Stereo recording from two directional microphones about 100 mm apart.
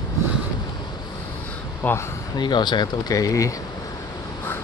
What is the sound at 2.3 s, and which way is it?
Speech, 50° left (ahead or behind).